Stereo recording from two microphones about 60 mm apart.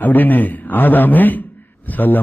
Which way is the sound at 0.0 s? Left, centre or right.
Left.